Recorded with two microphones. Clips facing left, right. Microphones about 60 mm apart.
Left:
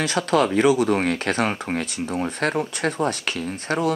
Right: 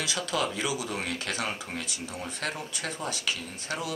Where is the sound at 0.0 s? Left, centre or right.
Left.